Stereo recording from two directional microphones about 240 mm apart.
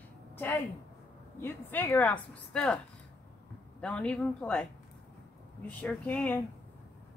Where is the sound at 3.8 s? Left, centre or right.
Centre.